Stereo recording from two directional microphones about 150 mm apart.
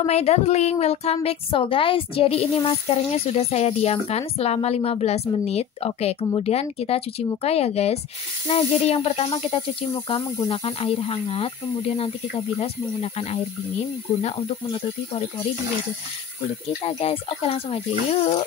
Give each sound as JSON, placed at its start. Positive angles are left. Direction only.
{"t": 0.0, "sound": "speech", "side_deg": 45}
{"t": 16.8, "sound": "speech", "side_deg": 40}